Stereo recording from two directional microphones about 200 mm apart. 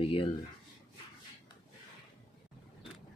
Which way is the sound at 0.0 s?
25° left (ahead or behind).